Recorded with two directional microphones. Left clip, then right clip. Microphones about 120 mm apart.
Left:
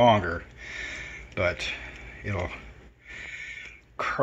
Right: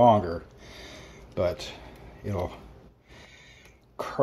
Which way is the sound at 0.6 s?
35° right (ahead or behind).